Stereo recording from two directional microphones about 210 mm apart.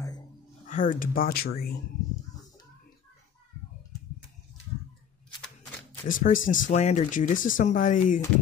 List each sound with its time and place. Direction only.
0.7 s speech: 40° left (ahead or behind)
6.0 s speech: 40° left (ahead or behind)